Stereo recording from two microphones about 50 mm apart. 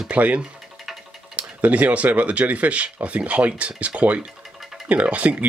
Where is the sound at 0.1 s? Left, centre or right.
Right.